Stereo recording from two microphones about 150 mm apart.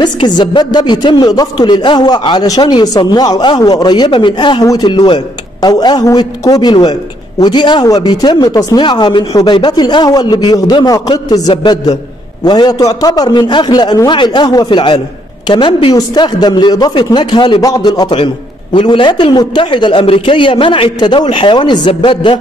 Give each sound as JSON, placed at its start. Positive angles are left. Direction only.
{"t": 0.0, "sound": "a man's voice", "side_deg": 30}